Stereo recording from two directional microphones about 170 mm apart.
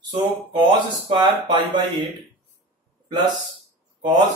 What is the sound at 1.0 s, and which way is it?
Speech, 30° right (ahead or behind).